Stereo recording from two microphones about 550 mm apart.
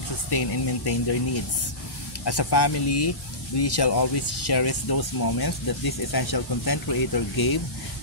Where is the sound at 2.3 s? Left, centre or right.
Left.